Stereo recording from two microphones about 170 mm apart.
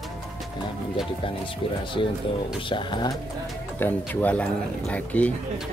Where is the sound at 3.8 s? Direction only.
10° left (ahead or behind).